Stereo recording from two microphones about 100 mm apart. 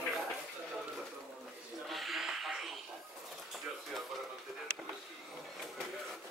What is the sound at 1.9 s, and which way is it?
Wheeze, centre (ahead or behind).